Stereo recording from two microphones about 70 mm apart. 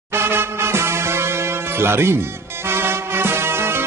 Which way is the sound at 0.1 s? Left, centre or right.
Right.